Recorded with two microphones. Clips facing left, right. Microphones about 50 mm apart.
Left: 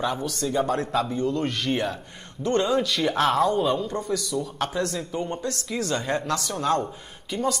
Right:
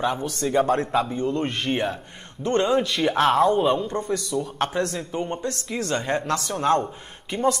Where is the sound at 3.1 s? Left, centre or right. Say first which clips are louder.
Right 3 dB; centre.